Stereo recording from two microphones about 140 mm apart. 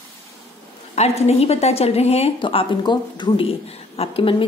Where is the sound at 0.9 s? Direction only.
50° left (ahead or behind).